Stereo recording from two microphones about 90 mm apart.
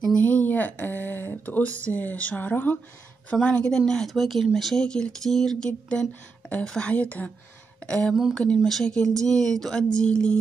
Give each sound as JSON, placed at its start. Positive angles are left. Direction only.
{"t": 0.0, "sound": "a woman's voice", "side_deg": 15}
{"t": 8.1, "sound": "a woman's voice", "side_deg": -5}
{"t": 8.4, "sound": "speech", "side_deg": 5}